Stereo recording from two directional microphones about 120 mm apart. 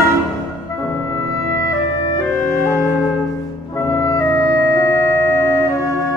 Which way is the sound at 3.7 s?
25° left (ahead or behind).